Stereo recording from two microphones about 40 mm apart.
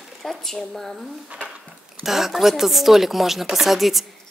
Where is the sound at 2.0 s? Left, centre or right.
Centre.